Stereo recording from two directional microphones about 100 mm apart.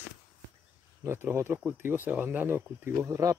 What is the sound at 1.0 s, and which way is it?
Speech, 25° right (ahead or behind).